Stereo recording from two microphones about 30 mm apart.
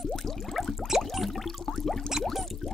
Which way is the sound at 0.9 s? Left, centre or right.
Centre.